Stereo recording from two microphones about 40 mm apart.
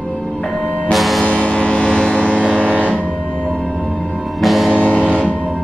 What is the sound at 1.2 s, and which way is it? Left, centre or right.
Music, left.